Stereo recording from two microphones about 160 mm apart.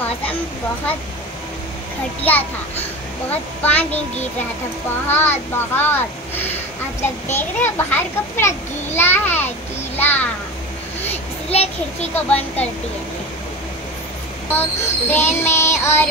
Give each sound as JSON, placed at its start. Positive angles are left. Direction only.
{"t": 2.2, "sound": "a child's voice", "side_deg": 10}
{"t": 5.0, "sound": "a child's voice", "side_deg": 10}
{"t": 11.5, "sound": "a child's voice", "side_deg": 40}
{"t": 14.5, "sound": "a child's voice", "side_deg": 15}